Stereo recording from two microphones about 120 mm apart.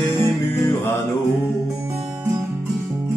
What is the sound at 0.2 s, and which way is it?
Music, 20° left (ahead or behind).